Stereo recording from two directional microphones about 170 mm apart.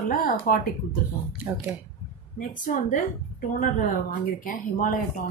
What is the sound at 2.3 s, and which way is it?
A woman's voice, 50° left (ahead or behind).